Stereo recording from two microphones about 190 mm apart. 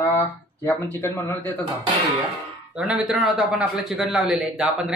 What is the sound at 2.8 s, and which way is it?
A man's voice, 5° right (ahead or behind).